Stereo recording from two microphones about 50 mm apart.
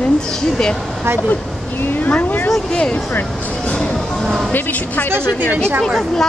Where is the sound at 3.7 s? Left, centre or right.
Centre.